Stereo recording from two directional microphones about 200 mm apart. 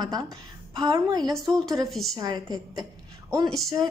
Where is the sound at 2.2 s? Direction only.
20° right (ahead or behind).